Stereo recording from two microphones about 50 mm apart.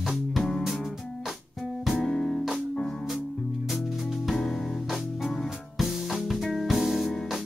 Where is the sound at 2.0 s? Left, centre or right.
Centre.